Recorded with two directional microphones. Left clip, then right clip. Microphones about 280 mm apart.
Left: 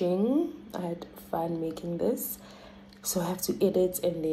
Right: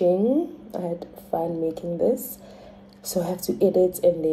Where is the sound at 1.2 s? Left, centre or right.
Left.